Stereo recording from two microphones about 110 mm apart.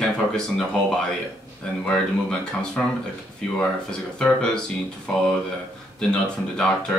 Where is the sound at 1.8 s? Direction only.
10° left (ahead or behind).